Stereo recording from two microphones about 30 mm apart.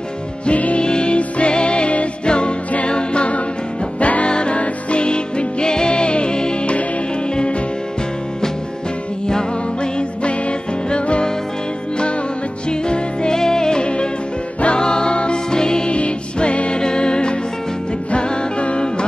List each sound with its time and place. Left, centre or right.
0.5 s music: left
0.7 s music: left
4.3 s music: left
10.9 s music: left
12.6 s music: left
15.9 s music: left